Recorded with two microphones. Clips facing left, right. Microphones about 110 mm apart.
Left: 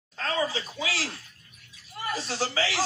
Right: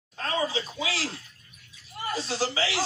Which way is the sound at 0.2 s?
20° right (ahead or behind).